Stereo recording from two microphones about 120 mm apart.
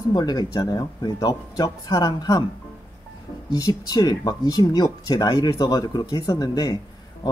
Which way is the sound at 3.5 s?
35° left (ahead or behind).